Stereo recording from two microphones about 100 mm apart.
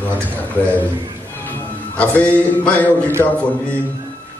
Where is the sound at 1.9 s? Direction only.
15° left (ahead or behind).